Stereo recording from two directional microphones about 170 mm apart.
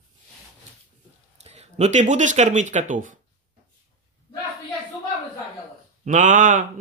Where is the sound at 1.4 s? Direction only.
40° right (ahead or behind).